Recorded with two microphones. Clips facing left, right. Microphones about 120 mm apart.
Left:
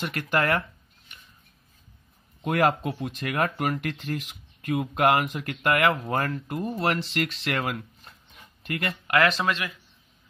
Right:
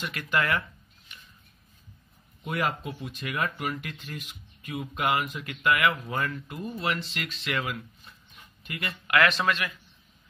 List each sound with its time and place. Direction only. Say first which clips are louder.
0.0 s speech: left 3 dB; 55° left (ahead or behind)
2.4 s speech: left 7 dB; 65° left (ahead or behind)
3.4 s speech: left 5 dB; 45° left (ahead or behind)
3.8 s speech: left 8 dB; 90° left
4.9 s speech: left 5 dB; 60° left (ahead or behind)
5.6 s speech: left 2 dB; 55° left (ahead or behind)
5.9 s speech: left 4 dB; 45° left (ahead or behind); by 7.5 s 75° left (ahead or behind)
7.5 s speech: left 3 dB; 50° left (ahead or behind)
8.6 s speech: left 6 dB; 75° left (ahead or behind)
9.0 s speech: left 1 dB; 35° left (ahead or behind)